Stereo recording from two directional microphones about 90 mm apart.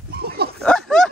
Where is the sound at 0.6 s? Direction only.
5° left (ahead or behind).